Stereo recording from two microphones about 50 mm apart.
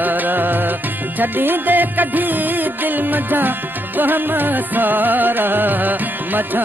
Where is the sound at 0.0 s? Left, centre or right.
Right.